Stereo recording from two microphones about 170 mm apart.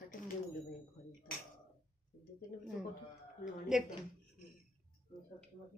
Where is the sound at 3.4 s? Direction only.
5° right (ahead or behind).